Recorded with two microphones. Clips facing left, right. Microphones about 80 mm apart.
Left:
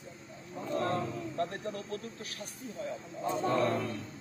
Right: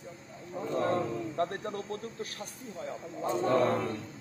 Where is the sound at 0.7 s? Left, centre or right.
Right.